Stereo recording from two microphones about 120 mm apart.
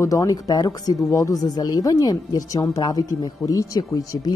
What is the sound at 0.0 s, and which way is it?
Speech, 30° left (ahead or behind).